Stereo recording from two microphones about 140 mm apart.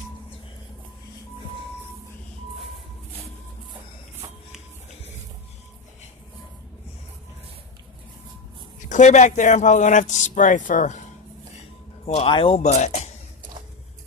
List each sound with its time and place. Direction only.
8.7 s speech: 60° left (ahead or behind)
12.1 s speech: 45° left (ahead or behind)